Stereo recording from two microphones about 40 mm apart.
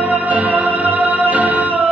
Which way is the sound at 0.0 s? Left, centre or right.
Right.